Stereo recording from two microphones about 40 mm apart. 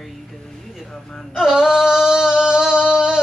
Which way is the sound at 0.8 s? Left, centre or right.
Centre.